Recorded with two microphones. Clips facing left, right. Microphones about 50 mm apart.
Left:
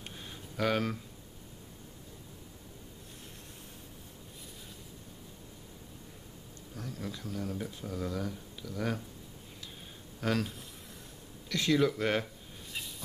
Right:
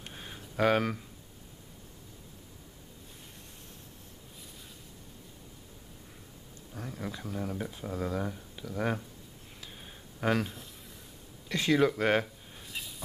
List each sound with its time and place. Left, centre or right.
0.1 s a sound: centre
6.7 s speech: right
10.2 s speech: centre